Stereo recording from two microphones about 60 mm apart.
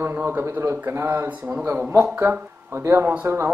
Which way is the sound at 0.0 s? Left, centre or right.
Right.